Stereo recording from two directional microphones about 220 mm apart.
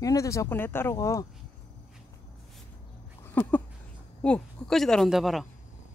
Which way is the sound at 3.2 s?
10° left (ahead or behind).